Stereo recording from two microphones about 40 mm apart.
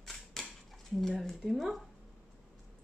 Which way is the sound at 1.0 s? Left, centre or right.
Centre.